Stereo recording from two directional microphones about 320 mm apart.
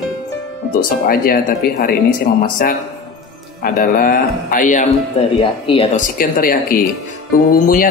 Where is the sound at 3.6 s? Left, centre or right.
Left.